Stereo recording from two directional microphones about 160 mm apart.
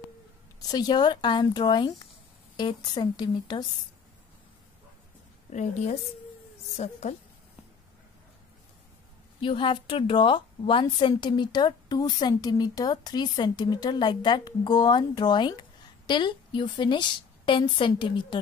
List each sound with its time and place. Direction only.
0.6 s a woman's voice: 25° left (ahead or behind)
5.5 s a woman's voice: 45° left (ahead or behind)
9.4 s a woman's voice: 30° left (ahead or behind)